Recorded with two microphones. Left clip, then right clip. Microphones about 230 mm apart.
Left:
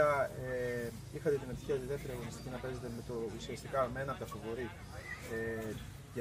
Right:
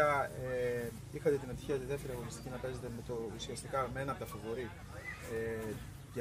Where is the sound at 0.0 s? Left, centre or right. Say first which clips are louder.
Left 1 dB; centre.